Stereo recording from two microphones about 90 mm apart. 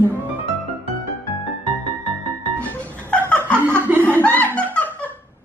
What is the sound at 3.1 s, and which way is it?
Snicker, 15° left (ahead or behind).